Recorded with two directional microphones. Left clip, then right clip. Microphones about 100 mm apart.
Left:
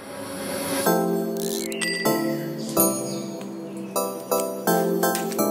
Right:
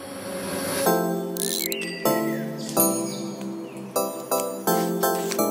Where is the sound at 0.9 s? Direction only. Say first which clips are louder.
Left 2 dB; 15° left (ahead or behind).